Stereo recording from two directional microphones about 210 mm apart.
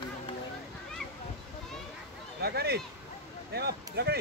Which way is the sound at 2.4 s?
50° right (ahead or behind).